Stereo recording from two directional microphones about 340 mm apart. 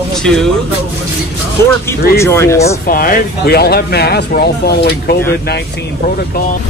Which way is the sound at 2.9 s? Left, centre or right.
Left.